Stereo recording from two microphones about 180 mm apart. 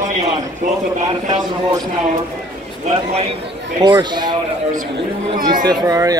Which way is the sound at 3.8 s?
25° right (ahead or behind).